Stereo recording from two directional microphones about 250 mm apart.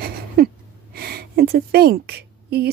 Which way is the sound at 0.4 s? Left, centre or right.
Right.